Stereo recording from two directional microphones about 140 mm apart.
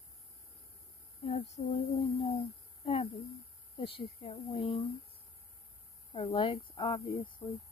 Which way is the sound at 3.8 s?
40° left (ahead or behind).